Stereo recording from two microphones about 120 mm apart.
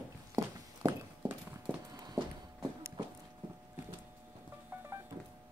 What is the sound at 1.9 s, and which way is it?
Horse, 30° right (ahead or behind).